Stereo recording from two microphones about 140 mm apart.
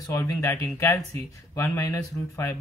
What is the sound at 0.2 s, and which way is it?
A man's voice, 15° left (ahead or behind).